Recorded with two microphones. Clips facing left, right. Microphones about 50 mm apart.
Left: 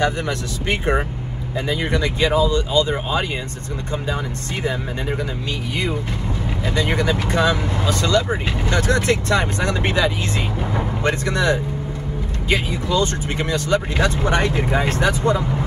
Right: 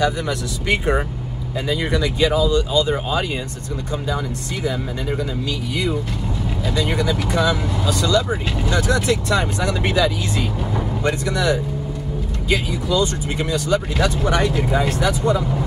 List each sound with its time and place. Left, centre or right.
0.0 s speech: left
2.9 s speech: left
6.6 s speech: left